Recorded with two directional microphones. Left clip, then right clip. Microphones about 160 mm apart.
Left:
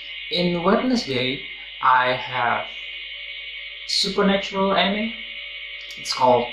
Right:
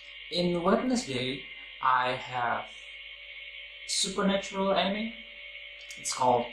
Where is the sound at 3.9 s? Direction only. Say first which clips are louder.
Left 9 dB; 10° right (ahead or behind).